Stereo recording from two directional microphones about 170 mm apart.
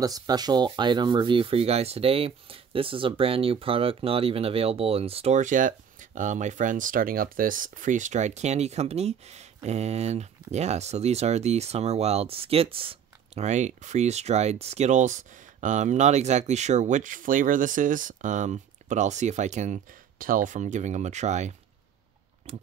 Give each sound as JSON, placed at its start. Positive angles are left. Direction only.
{"t": 0.0, "sound": "speech", "side_deg": -20}